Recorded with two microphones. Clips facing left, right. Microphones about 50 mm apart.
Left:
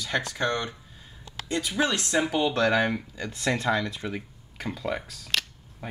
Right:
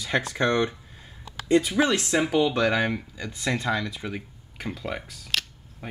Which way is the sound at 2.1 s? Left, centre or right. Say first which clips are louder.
Right 1 dB; centre.